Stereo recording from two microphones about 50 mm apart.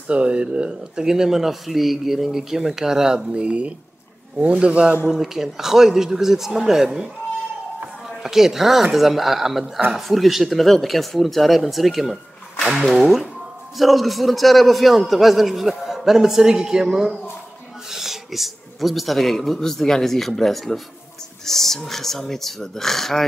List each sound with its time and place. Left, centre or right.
0.1 s speech: right
5.0 s speech: centre
8.2 s a man's voice: centre